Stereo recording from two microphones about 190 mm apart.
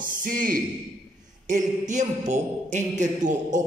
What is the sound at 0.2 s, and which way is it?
A man's voice, 45° right (ahead or behind).